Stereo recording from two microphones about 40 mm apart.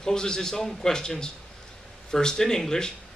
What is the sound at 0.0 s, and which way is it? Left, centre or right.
Speech, centre.